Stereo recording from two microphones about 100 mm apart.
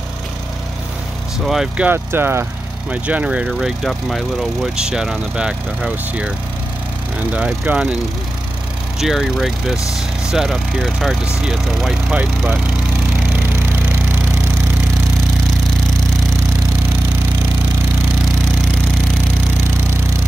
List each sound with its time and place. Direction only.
1.4 s speech: 5° right (ahead or behind)
1.9 s speech: 20° right (ahead or behind)
7.3 s speech: 10° right (ahead or behind)
9.0 s speech: 5° right (ahead or behind)